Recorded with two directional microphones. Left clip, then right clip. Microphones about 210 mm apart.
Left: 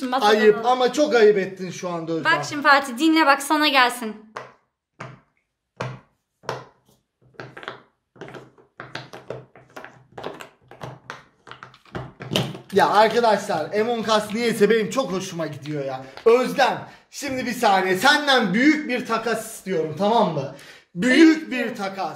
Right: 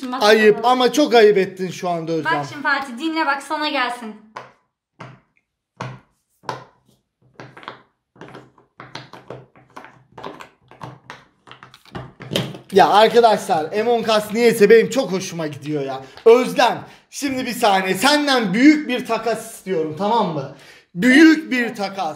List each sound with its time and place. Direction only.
0.2 s a man's voice: 35° right (ahead or behind)
2.2 s a woman's voice: 55° left (ahead or behind)
4.4 s a sound: 15° left (ahead or behind)
8.3 s tap: 15° left (ahead or behind)
9.8 s a sound: 15° left (ahead or behind)
12.3 s a sound: 5° right (ahead or behind)
12.7 s a man's voice: 35° right (ahead or behind)
19.6 s speech: 10° right (ahead or behind)
21.0 s a man's voice: 30° right (ahead or behind)